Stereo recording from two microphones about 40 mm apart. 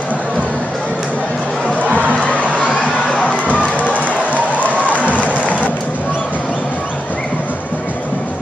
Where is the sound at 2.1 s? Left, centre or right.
Left.